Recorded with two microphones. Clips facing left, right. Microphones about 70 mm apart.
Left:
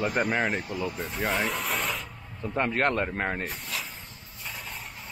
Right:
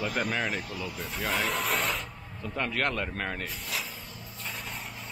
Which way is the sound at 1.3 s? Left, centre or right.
Centre.